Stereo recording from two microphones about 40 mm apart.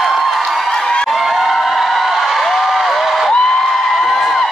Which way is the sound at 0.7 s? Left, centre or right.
Centre.